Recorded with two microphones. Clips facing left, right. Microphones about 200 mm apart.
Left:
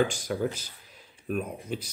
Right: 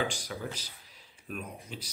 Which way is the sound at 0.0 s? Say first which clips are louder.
Left 8 dB; 50° left (ahead or behind).